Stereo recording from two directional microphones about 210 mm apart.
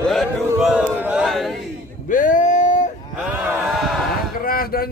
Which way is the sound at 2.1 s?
40° left (ahead or behind).